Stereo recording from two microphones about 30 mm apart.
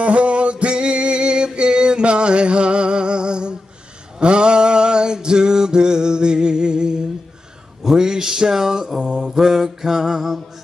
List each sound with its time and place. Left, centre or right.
0.0 s music: right
7.8 s a sound: right
9.2 s mantra: centre